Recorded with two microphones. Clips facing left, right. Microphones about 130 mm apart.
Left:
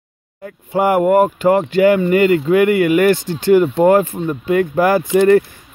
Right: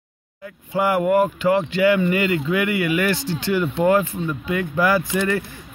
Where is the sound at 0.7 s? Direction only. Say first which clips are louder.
Left 5 dB; 45° left (ahead or behind).